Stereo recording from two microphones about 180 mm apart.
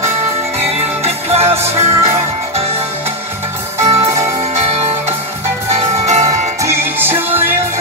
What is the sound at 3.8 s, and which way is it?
Music, 15° right (ahead or behind).